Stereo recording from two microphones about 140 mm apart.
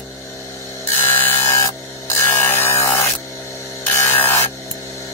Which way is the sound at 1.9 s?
15° left (ahead or behind).